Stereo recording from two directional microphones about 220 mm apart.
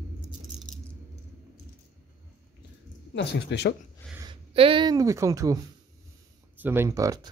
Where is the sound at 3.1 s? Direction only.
50° left (ahead or behind).